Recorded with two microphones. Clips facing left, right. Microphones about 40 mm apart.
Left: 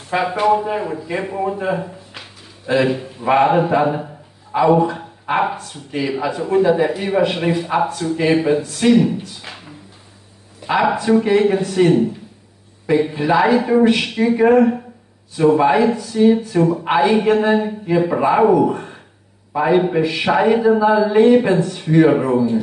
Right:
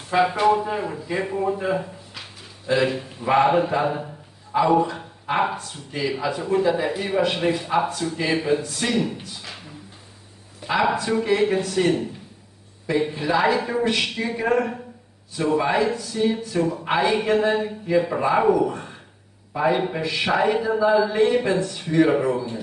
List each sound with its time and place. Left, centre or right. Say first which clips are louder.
0.1 s speech: left 2 dB; centre
8.2 s speech: left 6 dB; centre
10.7 s speech: left 6 dB; centre
13.1 s speech: left 5 dB; centre
14.0 s speech: left 9 dB; centre
16.6 s speech: left 8 dB; left
16.9 s a man's voice: left 5 dB; centre